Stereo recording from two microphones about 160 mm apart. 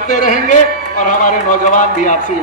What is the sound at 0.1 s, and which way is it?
A man's voice, 55° left (ahead or behind).